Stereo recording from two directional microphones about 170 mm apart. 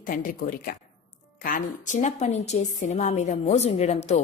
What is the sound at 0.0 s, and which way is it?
A woman's voice, 55° left (ahead or behind).